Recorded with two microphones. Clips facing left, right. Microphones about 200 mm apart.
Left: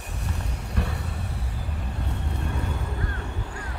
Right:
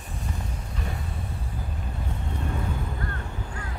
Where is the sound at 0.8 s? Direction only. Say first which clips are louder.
Left 6 dB; 70° left (ahead or behind).